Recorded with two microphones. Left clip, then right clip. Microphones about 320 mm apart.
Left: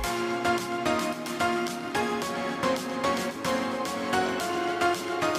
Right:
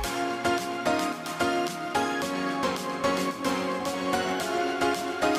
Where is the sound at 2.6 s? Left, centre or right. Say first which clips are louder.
Left 2 dB; centre.